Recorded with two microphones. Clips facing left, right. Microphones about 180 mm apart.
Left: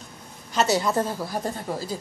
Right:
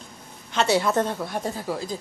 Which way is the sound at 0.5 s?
Centre (ahead or behind).